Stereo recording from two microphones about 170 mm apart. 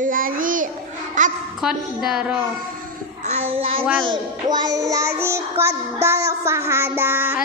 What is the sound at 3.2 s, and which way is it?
Child singing, 40° right (ahead or behind).